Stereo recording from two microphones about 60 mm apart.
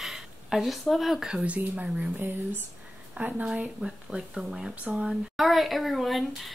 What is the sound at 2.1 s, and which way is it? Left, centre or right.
Speech, right.